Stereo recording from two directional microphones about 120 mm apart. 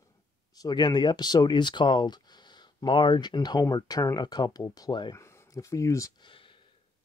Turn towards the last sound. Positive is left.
turn(degrees=45)  # may be behind; listen again after turning